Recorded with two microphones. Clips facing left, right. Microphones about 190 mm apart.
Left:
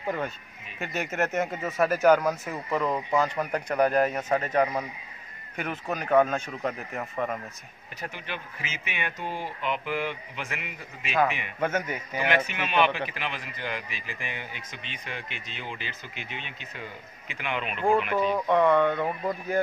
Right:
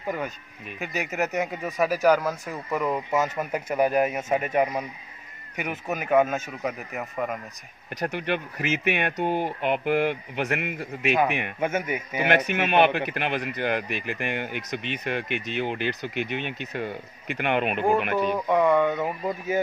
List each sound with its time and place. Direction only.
0.7 s a man's voice: centre (ahead or behind)
7.9 s a man's voice: 75° right (ahead or behind)
11.6 s a man's voice: 10° right (ahead or behind)
12.3 s a man's voice: 65° right (ahead or behind)
18.1 s a man's voice: centre (ahead or behind)